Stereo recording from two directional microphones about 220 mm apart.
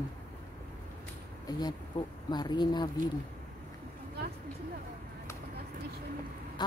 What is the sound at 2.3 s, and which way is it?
Speech, 20° left (ahead or behind).